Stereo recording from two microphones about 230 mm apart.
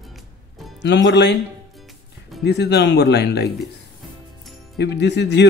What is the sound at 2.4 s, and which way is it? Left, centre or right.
Speech, left.